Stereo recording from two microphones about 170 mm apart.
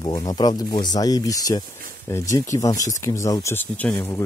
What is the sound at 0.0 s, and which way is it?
Speech, 20° left (ahead or behind).